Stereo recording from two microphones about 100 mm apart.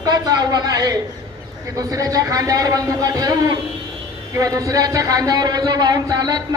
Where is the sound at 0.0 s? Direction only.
40° right (ahead or behind).